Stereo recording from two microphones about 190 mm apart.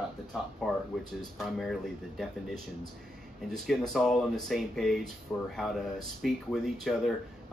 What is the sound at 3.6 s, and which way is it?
Speech, centre (ahead or behind).